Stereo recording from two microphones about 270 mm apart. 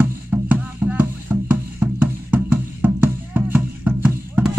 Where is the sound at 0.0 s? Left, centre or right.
Centre.